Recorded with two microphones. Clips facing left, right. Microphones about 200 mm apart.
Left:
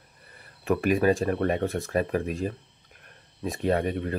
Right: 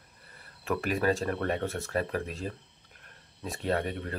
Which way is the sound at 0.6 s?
15° left (ahead or behind).